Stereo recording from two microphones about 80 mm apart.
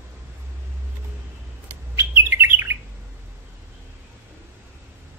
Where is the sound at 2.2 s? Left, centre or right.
Right.